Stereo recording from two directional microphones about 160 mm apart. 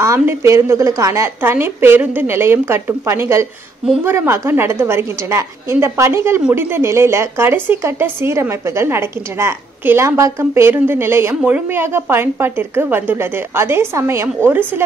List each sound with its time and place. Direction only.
0.0 s a woman's voice: 15° right (ahead or behind)